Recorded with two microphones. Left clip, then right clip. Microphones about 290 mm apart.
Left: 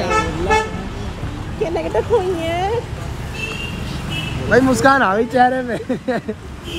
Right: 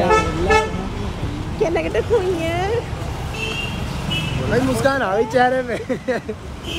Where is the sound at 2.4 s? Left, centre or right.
Centre.